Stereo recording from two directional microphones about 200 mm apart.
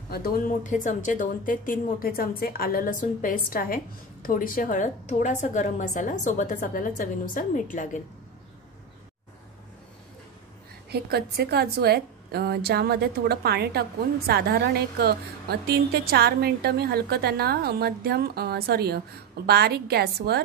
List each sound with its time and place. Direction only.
0.1 s a woman's voice: 45° left (ahead or behind)
10.9 s a woman's voice: 50° right (ahead or behind)